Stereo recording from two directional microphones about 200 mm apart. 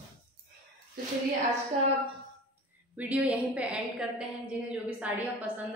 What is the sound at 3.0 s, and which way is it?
A woman's voice, 5° right (ahead or behind).